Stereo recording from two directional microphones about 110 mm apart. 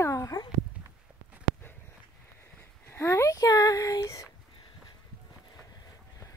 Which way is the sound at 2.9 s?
25° left (ahead or behind).